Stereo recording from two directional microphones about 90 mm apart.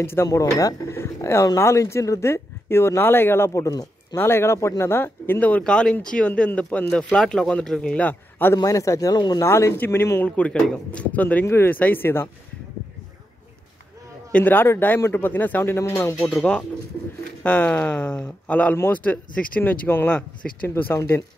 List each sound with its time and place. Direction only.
0.0 s speech: 25° left (ahead or behind)
0.4 s speech: 40° left (ahead or behind)
0.9 s speech: 30° left (ahead or behind)
4.1 s speech: 30° left (ahead or behind)
8.6 s speech: 35° left (ahead or behind)
9.1 s speech: 50° left (ahead or behind)
9.4 s speech: 35° left (ahead or behind)
10.2 s speech: 15° left (ahead or behind)
14.3 s speech: 20° left (ahead or behind)
16.2 s speech: 10° left (ahead or behind)
20.9 s speech: 30° left (ahead or behind)